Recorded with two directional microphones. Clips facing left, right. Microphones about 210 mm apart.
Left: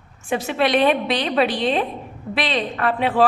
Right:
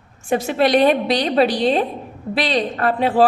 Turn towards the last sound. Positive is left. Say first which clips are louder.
# right 2 dB
turn(degrees=-35)  # may be behind; listen again after turning